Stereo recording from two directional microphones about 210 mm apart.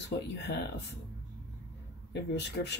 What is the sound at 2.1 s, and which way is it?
Speech, 55° left (ahead or behind).